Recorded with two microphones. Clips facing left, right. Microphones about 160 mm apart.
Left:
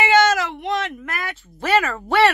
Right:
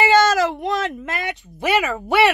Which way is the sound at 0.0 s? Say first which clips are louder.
Right 2 dB; 35° right (ahead or behind).